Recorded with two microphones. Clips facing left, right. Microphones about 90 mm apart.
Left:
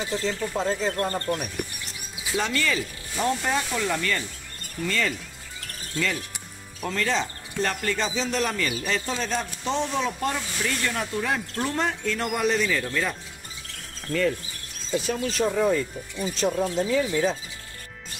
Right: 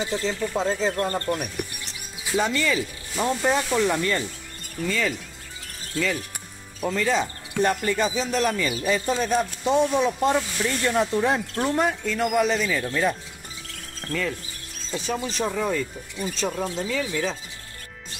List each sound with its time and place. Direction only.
0.0 s speech: centre (ahead or behind)
3.4 s speech: 20° right (ahead or behind)
4.8 s speech: 5° right (ahead or behind)
6.8 s speech: 5° right (ahead or behind); by 11.4 s 25° right (ahead or behind)
11.6 s speech: 10° right (ahead or behind)
14.9 s speech: centre (ahead or behind)
16.8 s speech: 10° left (ahead or behind)